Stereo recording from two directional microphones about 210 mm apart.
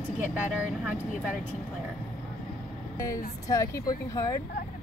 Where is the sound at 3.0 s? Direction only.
15° left (ahead or behind).